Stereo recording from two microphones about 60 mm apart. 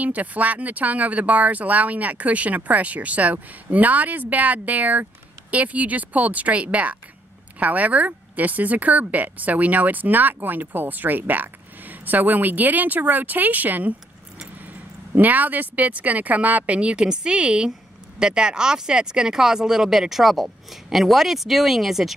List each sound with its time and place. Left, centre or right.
0.0 s speech: right
15.1 s speech: right; by 22.1 s centre